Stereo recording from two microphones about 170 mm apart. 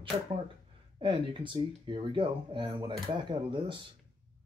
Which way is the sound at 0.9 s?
30° right (ahead or behind).